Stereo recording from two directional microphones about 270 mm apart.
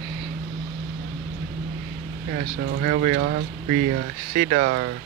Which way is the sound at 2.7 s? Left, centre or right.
Right.